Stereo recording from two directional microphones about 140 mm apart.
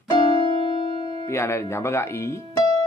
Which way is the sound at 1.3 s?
20° left (ahead or behind).